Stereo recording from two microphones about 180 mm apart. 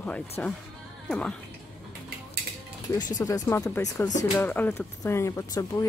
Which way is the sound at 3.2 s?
20° left (ahead or behind).